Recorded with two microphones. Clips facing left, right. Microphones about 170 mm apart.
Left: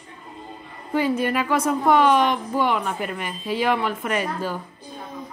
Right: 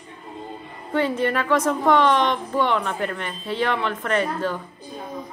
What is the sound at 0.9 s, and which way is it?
A woman's voice, 10° left (ahead or behind).